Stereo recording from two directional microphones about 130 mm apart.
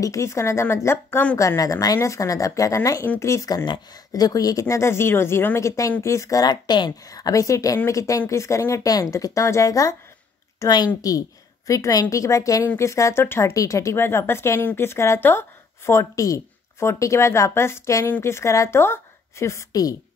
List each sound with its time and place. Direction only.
0.0 s a woman's voice: 25° left (ahead or behind)